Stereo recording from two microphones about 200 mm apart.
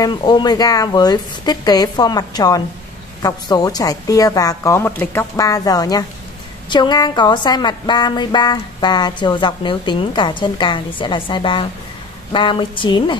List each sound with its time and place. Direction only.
0.0 s a woman's voice: 20° left (ahead or behind)